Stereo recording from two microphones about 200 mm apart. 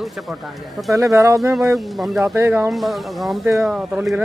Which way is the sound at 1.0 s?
15° right (ahead or behind).